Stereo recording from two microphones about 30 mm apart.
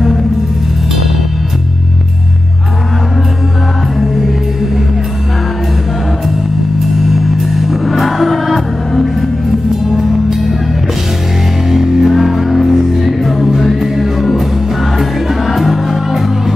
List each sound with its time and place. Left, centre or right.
6.8 s music: centre
9.8 s music: centre
11.7 s music: centre